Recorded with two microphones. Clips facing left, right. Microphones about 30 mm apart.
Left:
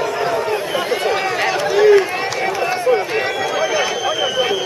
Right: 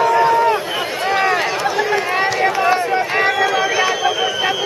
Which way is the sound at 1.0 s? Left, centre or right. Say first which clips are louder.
Right 1 dB; centre.